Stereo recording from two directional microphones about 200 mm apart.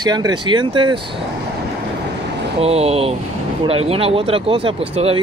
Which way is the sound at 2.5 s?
30° right (ahead or behind).